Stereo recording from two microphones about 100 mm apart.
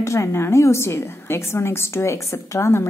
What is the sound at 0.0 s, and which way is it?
A woman's voice, 30° left (ahead or behind).